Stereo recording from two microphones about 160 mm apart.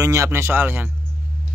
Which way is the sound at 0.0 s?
20° right (ahead or behind).